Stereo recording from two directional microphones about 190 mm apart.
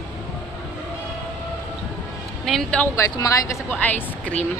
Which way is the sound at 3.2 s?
15° left (ahead or behind).